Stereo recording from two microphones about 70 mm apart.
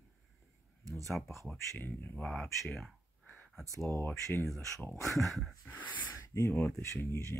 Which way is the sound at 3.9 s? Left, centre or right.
Left.